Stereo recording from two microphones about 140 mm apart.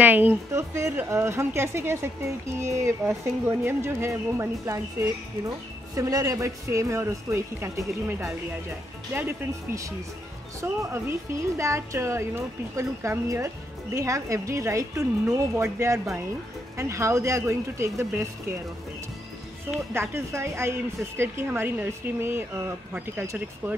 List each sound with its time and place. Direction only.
0.0 s a woman's voice: 15° right (ahead or behind)
9.1 s a woman's voice: 15° right (ahead or behind)
19.9 s speech: 20° right (ahead or behind)